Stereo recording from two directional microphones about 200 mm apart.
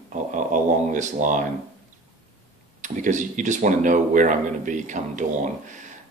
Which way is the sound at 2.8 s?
40° right (ahead or behind).